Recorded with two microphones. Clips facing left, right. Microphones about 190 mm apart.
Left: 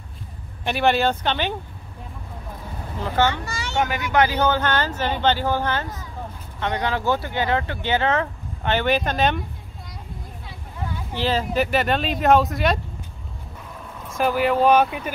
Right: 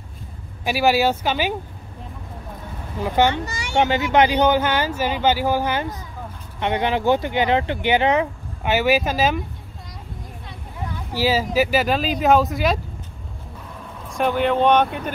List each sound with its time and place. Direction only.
0.7 s speech: 5° right (ahead or behind)
3.0 s speech: 15° right (ahead or behind)
11.1 s speech: 5° right (ahead or behind)
14.0 s speech: centre (ahead or behind)